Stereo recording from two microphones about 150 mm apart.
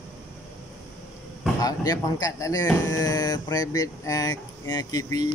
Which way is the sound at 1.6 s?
25° left (ahead or behind).